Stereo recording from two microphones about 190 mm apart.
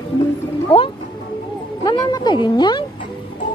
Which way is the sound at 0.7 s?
30° left (ahead or behind).